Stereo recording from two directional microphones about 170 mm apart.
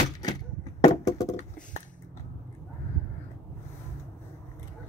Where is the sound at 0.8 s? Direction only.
20° left (ahead or behind).